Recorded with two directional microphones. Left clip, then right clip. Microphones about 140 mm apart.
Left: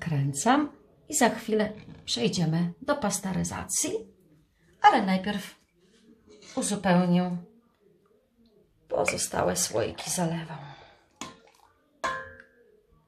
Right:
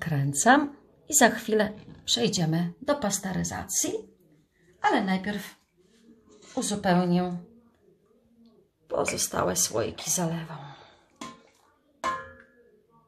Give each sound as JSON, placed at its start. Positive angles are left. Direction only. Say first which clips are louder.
{"t": 0.0, "sound": "a woman's voice", "louder": "right 4 dB", "side_deg": -30}
{"t": 4.7, "sound": "a woman's voice", "louder": "left 5 dB", "side_deg": 20}
{"t": 6.5, "sound": "a woman's voice", "louder": "even", "side_deg": -5}
{"t": 8.8, "sound": "speech", "louder": "left 1 dB", "side_deg": -10}